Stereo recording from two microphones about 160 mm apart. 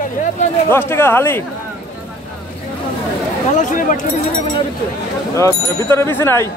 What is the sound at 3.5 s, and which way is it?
Speech, 50° left (ahead or behind).